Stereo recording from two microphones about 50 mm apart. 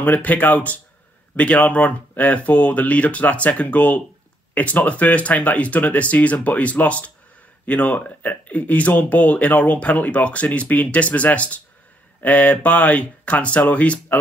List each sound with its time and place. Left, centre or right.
0.0 s speech: left